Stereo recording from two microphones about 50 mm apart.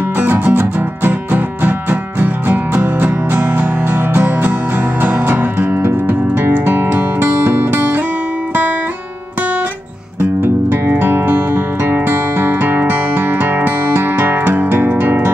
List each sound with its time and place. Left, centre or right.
0.2 s music: right
10.4 s music: right